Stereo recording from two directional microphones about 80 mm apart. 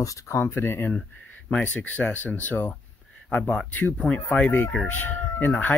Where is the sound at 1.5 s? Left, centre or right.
Centre.